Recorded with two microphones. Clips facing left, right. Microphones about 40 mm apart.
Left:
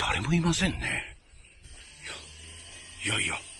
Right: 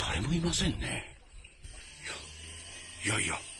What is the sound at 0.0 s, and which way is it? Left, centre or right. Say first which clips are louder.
Speech: left 5 dB; left.